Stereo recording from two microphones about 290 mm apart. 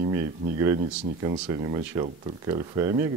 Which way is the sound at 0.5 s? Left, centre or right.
Centre.